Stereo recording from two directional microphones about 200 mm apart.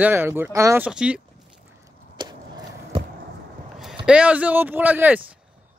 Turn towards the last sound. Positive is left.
turn(degrees=-10)  # may be behind; listen again after turning